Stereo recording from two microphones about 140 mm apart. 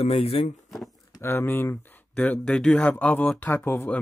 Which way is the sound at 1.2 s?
15° left (ahead or behind).